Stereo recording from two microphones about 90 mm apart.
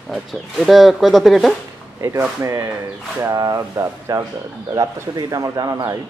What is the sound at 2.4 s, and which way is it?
Speech, 30° right (ahead or behind).